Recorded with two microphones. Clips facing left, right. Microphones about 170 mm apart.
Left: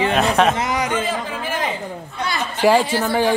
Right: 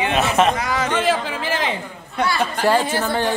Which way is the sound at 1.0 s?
90° right.